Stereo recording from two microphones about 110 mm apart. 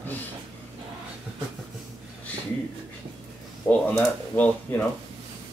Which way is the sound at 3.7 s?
15° left (ahead or behind).